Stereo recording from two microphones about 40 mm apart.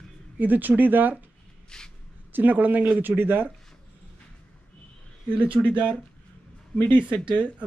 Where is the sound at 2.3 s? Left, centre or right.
Right.